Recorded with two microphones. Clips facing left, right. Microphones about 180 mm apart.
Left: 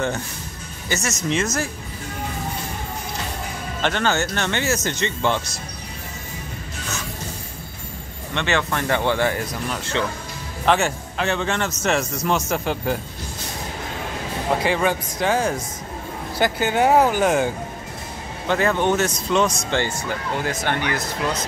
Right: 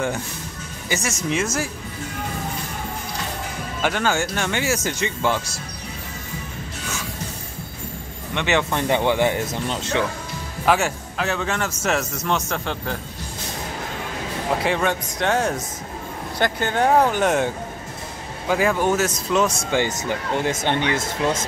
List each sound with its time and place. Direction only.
0.8 s speech: 10° right (ahead or behind)
3.8 s speech: 10° right (ahead or behind)
8.4 s speech: 15° right (ahead or behind)
10.6 s speech: 5° right (ahead or behind)
14.6 s speech: centre (ahead or behind)
19.7 s speech: 15° right (ahead or behind)